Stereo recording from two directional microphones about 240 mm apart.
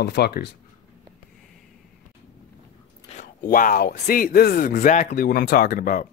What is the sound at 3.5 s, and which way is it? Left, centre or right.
Speech, left.